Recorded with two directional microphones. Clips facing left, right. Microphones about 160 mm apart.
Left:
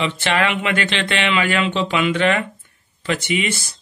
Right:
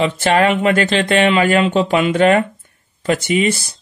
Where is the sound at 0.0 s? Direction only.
40° right (ahead or behind).